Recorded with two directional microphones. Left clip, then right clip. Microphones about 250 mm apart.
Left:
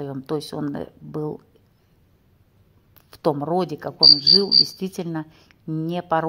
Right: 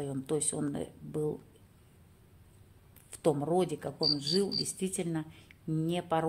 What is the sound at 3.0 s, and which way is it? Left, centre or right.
A woman's voice, centre.